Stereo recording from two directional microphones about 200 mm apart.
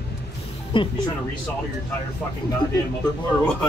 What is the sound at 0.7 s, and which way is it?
Speech, 25° left (ahead or behind).